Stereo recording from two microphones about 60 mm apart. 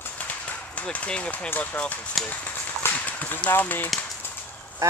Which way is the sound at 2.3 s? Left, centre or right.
Left.